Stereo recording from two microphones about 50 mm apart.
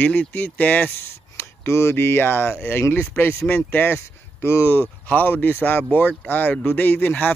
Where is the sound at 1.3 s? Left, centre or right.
Left.